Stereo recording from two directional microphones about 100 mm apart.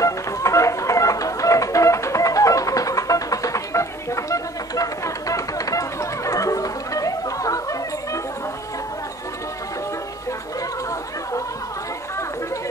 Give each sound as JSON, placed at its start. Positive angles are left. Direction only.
{"t": 0.0, "sound": "music", "side_deg": 30}